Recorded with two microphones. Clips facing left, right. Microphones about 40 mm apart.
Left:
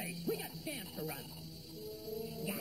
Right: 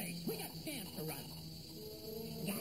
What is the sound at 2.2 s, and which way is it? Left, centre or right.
Music, centre.